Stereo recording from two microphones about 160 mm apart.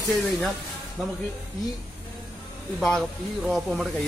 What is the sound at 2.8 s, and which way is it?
A man's voice, centre (ahead or behind).